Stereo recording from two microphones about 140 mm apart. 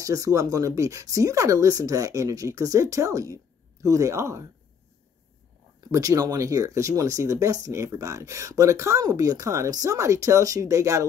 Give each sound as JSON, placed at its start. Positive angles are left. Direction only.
{"t": 0.0, "sound": "speech", "side_deg": -25}
{"t": 5.9, "sound": "speech", "side_deg": -25}